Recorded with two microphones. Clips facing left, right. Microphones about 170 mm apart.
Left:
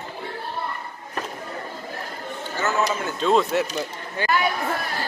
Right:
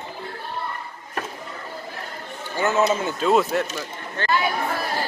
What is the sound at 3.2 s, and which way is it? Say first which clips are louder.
Speech: left 1 dB; 5° right (ahead or behind).